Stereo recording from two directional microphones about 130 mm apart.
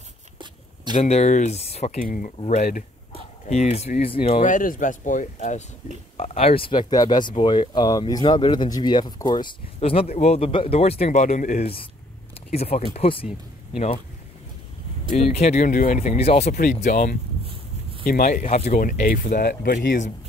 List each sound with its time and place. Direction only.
1.0 s speech: 60° left (ahead or behind)
2.0 s speech: 90° left
2.4 s speech: 55° left (ahead or behind)
4.4 s speech: 85° left; by 5.6 s 65° left (ahead or behind)
6.1 s speech: 50° left (ahead or behind); by 9.6 s 35° left (ahead or behind)
9.8 s a man's voice: 50° left (ahead or behind); by 11.6 s 70° left (ahead or behind)
11.6 s a man's voice: 45° left (ahead or behind)
15.3 s speech: 60° left (ahead or behind); by 16.2 s 75° left (ahead or behind)
16.2 s a man's voice: 50° left (ahead or behind)
16.5 s speech: 80° left
18.5 s speech: 75° left (ahead or behind); by 20.1 s 90° left